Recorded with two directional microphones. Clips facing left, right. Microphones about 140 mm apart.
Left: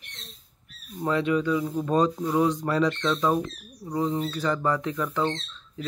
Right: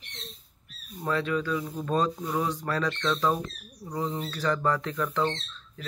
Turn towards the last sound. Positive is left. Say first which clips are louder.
# left 1 dB
turn(degrees=10)  # may be behind; listen again after turning